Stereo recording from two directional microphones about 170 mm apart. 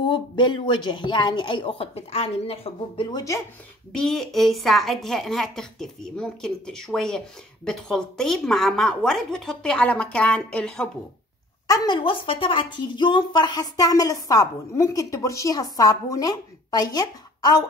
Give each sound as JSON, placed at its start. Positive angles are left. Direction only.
{"t": 0.0, "sound": "speech", "side_deg": 30}
{"t": 3.9, "sound": "a woman's voice", "side_deg": 5}
{"t": 11.6, "sound": "speech", "side_deg": 25}